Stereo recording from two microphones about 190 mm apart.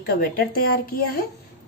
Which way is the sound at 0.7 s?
50° left (ahead or behind).